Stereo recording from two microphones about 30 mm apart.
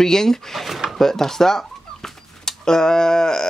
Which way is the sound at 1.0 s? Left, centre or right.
Centre.